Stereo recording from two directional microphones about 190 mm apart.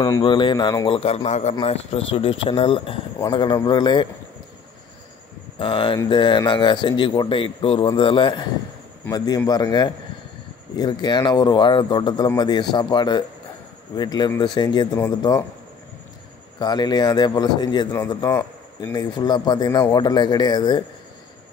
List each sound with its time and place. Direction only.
0.0 s a man's voice: 20° left (ahead or behind)
5.6 s a man's voice: 25° left (ahead or behind)
16.5 s a man's voice: 20° left (ahead or behind)